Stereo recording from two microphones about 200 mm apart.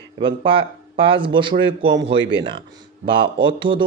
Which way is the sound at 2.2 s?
65° right (ahead or behind).